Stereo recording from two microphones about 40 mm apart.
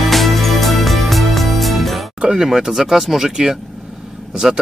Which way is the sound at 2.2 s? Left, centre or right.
Centre.